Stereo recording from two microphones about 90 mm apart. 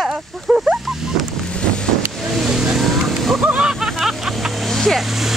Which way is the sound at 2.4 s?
5° right (ahead or behind).